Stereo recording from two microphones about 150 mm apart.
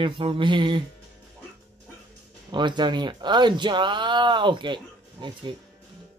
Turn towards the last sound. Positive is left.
turn(degrees=-30)  # may be behind; listen again after turning